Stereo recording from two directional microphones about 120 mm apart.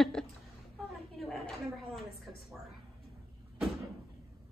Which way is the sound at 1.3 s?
5° left (ahead or behind).